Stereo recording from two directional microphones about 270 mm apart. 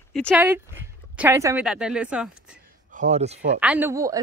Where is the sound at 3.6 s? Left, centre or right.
Centre.